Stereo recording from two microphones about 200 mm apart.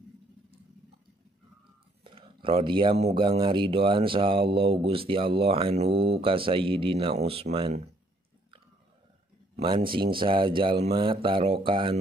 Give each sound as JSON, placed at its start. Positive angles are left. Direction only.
{"t": 2.0, "sound": "speech", "side_deg": -25}
{"t": 9.6, "sound": "speech", "side_deg": -30}